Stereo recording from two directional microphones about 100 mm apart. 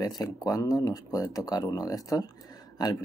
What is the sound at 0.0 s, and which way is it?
Speech, 40° left (ahead or behind).